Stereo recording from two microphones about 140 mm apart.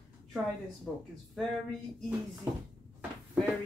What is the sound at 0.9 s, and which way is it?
Speech, centre (ahead or behind).